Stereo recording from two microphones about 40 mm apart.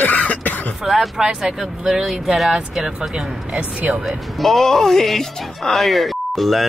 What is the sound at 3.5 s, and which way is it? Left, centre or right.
Speech, right.